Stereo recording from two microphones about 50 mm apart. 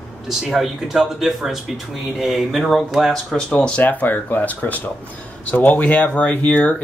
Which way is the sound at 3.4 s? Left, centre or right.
Left.